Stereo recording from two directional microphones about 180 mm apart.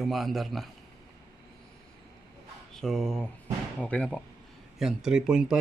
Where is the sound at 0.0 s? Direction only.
Centre (ahead or behind).